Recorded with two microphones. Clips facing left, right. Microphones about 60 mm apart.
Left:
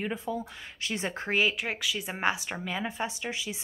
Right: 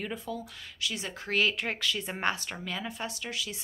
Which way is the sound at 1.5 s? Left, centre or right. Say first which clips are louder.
Even; centre.